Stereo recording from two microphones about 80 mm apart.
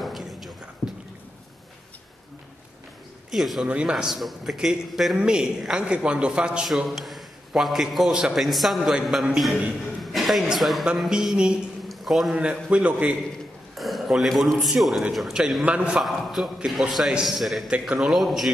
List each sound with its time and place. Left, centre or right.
0.0 s a sound: centre
0.8 s a sound: centre
3.3 s speech: centre
3.6 s a man's voice: centre
3.9 s a man's voice: centre
11.9 s a sound: centre
12.4 s a man's voice: centre
13.7 s a man's voice: centre
16.1 s speech: centre